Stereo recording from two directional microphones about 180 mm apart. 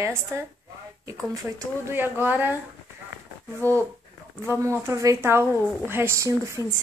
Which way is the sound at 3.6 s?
10° left (ahead or behind).